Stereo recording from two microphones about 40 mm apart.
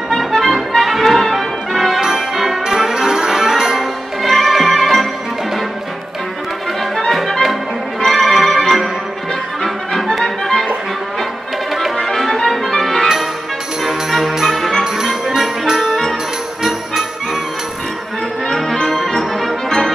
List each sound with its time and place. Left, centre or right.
0.1 s music: centre
2.0 s music: centre
4.2 s music: centre
7.1 s music: centre
8.0 s organ: centre
9.6 s music: centre
12.0 s music: centre
15.0 s music: centre
15.9 s brass instrument: centre
18.5 s brass instrument: centre